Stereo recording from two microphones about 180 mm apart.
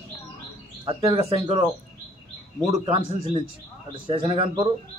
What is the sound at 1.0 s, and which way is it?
Speech, 15° right (ahead or behind).